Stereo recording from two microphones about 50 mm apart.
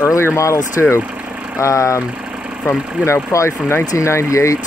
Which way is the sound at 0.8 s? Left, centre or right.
Left.